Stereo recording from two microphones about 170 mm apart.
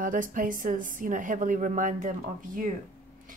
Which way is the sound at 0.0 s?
50° right (ahead or behind).